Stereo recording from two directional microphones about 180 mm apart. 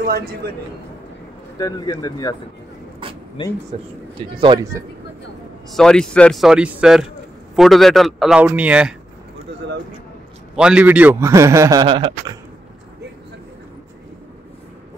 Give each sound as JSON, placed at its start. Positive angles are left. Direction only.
{"t": 1.6, "sound": "speech", "side_deg": 20}
{"t": 3.4, "sound": "speech", "side_deg": 30}
{"t": 4.4, "sound": "speech", "side_deg": -20}
{"t": 5.7, "sound": "a man's voice", "side_deg": 5}
{"t": 10.5, "sound": "a man's voice", "side_deg": -5}